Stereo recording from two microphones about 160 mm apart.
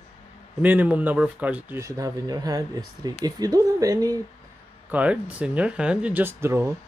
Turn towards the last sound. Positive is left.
turn(degrees=-15)  # may be behind; listen again after turning